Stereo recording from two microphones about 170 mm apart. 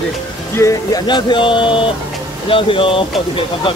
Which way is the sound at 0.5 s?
20° left (ahead or behind).